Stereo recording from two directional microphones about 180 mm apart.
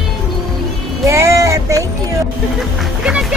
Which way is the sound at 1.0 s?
15° right (ahead or behind).